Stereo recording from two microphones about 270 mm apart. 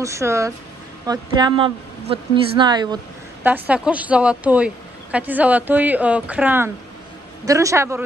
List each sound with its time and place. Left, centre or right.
0.0 s a woman's voice: centre